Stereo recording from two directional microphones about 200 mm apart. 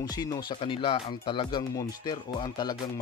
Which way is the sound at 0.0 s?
20° left (ahead or behind).